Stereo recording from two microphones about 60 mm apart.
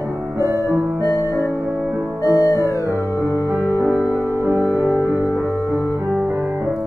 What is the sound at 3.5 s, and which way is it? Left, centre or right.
Music, right.